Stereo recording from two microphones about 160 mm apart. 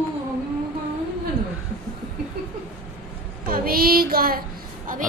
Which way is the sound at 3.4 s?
65° right (ahead or behind).